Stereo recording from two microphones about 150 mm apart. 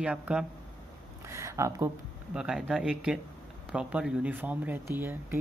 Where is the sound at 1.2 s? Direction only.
20° right (ahead or behind).